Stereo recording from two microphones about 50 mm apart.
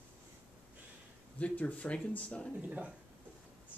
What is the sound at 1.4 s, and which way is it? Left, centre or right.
Speech, left.